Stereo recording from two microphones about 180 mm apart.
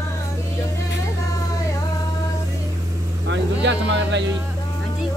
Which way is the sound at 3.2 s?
80° right.